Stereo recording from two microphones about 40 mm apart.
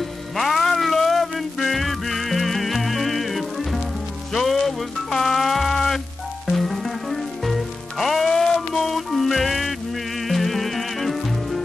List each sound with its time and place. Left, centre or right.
0.4 s music: centre